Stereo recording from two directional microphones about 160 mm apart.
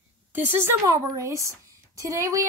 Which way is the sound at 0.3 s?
15° right (ahead or behind).